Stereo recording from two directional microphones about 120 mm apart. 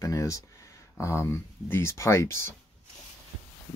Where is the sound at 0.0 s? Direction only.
25° left (ahead or behind).